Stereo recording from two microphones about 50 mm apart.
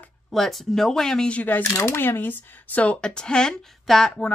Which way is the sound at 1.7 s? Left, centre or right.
Left.